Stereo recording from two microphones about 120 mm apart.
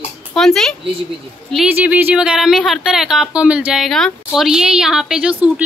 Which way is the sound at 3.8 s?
Centre (ahead or behind).